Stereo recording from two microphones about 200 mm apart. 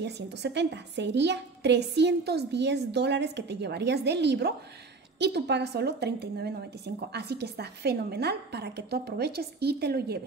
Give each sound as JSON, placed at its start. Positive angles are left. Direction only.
{"t": 0.0, "sound": "a woman's voice", "side_deg": -60}